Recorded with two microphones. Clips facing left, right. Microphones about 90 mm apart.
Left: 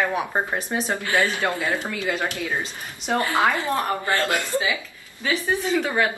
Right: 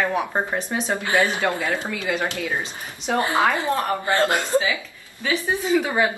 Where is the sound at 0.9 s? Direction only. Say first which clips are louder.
Right 2 dB; 20° right (ahead or behind).